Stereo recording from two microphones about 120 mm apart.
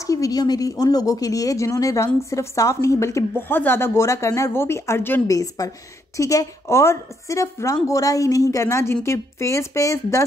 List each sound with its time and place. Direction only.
0.0 s speech: 30° left (ahead or behind)
5.3 s speech: 30° left (ahead or behind)